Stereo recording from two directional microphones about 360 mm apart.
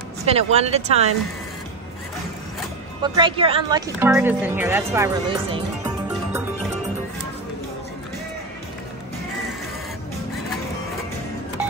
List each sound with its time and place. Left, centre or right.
0.2 s speech: centre
3.0 s a woman's voice: centre